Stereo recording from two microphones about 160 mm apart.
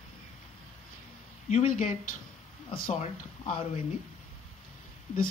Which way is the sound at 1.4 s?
50° left (ahead or behind).